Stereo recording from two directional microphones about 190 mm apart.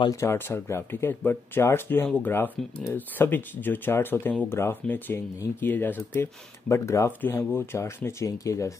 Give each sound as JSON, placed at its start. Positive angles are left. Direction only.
{"t": 0.0, "sound": "speech", "side_deg": 15}